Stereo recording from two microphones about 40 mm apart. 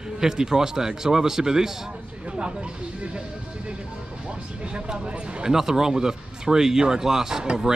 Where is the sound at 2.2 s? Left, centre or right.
Right.